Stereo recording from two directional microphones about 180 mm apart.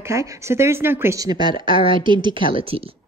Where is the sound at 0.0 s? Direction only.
15° right (ahead or behind); by 2.9 s 30° right (ahead or behind).